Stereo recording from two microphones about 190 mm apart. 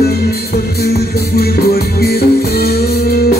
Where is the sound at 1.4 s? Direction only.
55° left (ahead or behind).